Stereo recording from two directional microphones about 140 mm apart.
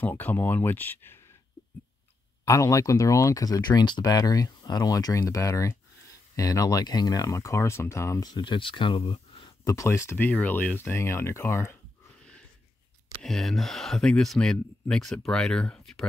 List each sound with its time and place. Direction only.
0.0 s speech: 15° left (ahead or behind)
2.4 s speech: 25° left (ahead or behind)
8.3 s speech: 35° left (ahead or behind)
9.7 s speech: 20° left (ahead or behind)
13.2 s speech: centre (ahead or behind)